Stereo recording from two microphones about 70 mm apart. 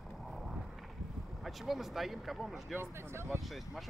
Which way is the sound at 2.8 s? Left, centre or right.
Right.